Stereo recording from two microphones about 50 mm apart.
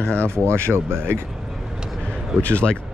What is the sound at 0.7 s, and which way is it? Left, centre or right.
Speech, right.